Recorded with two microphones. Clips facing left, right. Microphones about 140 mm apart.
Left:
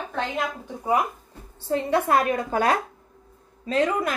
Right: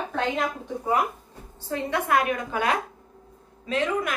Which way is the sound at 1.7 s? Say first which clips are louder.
Left 3 dB; 35° left (ahead or behind).